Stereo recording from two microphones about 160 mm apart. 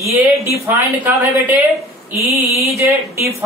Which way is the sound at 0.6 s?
10° right (ahead or behind).